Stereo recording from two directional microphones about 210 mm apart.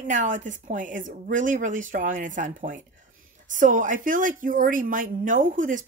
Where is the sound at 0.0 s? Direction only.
40° right (ahead or behind).